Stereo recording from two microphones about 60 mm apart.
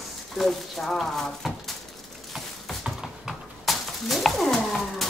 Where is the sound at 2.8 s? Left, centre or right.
Centre.